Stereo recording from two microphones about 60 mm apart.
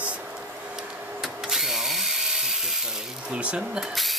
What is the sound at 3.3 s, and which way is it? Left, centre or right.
Speech, centre.